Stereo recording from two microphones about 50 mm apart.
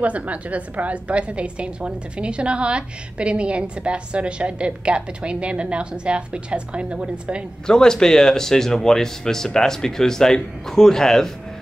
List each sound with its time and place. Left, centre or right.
0.0 s a woman's voice: right
7.6 s speech: centre